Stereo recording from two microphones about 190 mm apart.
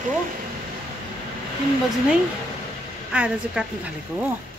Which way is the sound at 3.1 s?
5° right (ahead or behind).